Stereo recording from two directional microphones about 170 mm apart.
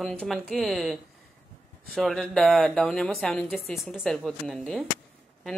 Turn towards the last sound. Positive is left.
turn(degrees=0)  # may be behind; listen again after turning